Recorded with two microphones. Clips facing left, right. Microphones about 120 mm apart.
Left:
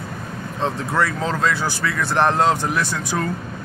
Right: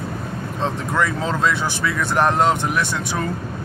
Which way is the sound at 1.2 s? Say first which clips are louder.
Even; 20° right (ahead or behind).